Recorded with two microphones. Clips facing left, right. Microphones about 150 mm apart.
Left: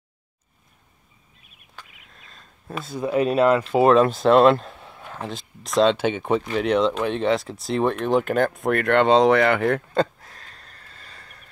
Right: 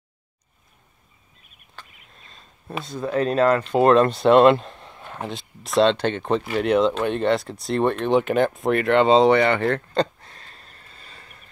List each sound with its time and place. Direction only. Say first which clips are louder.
1.8 s a sound: even; 10° left (ahead or behind)
2.1 s speech: even; centre (ahead or behind)
6.4 s speech: right 3 dB; 5° right (ahead or behind)